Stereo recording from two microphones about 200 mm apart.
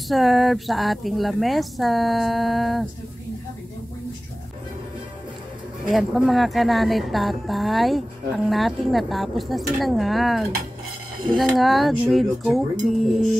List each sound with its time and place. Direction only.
0.1 s speech: centre (ahead or behind)
5.9 s speech: centre (ahead or behind)